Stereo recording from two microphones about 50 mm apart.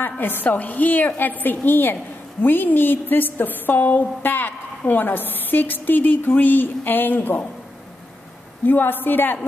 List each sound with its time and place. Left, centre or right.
0.0 s a woman's voice: left
8.6 s a woman's voice: left